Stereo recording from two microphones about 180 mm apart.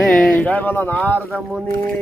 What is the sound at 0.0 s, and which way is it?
Speech, 5° left (ahead or behind).